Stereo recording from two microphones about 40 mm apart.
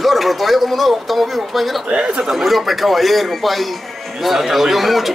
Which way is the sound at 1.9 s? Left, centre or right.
Right.